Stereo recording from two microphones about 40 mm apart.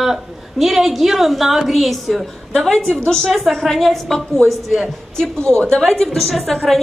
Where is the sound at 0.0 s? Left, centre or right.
Centre.